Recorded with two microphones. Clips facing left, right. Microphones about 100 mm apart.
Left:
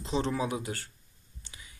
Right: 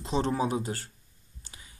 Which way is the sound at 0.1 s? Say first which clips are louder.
Right 3 dB; 40° right (ahead or behind).